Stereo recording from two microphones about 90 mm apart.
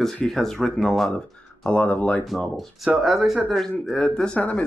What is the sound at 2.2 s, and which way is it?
Speech, centre (ahead or behind).